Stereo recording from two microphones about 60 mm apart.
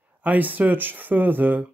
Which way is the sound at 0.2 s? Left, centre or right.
Right.